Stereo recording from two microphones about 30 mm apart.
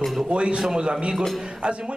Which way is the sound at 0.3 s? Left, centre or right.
Right.